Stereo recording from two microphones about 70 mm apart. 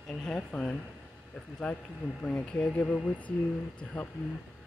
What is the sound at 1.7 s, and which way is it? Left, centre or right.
Speech, centre.